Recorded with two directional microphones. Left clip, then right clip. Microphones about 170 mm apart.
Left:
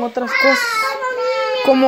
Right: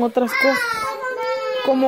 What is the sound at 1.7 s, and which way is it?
Speech, 25° left (ahead or behind).